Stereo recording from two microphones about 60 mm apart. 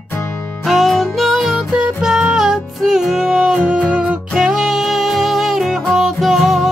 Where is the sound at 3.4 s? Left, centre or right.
Centre.